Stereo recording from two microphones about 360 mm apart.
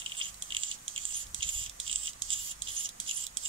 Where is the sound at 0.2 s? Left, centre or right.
Centre.